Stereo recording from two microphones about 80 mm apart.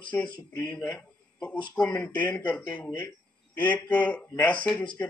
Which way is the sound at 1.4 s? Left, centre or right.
Centre.